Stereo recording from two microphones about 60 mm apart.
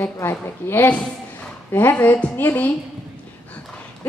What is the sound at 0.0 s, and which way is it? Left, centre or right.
A woman's voice, left.